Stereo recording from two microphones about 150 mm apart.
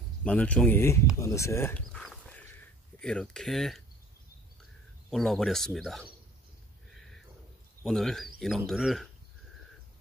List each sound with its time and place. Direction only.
0.2 s speech: 10° left (ahead or behind)
1.9 s dog: 5° left (ahead or behind)
3.0 s speech: 5° left (ahead or behind)
5.1 s speech: centre (ahead or behind)
7.8 s speech: 5° left (ahead or behind)